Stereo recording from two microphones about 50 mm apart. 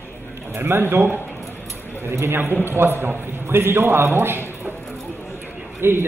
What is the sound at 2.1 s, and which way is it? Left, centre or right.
Speech, right.